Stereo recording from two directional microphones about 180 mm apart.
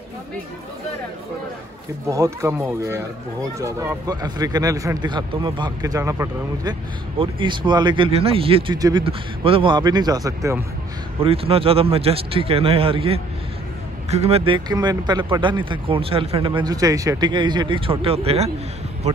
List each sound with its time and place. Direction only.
2.0 s speech: 15° right (ahead or behind)
11.1 s speech: 30° right (ahead or behind)